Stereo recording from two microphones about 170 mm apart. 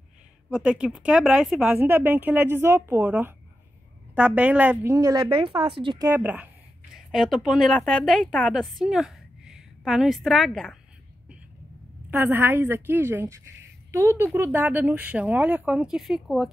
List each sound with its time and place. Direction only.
0.5 s a woman's voice: 5° right (ahead or behind); by 6.1 s 25° right (ahead or behind)
6.1 s a woman's voice: 10° right (ahead or behind)
12.1 s a woman's voice: 10° right (ahead or behind)